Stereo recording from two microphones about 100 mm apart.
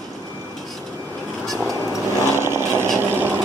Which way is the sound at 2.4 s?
25° right (ahead or behind).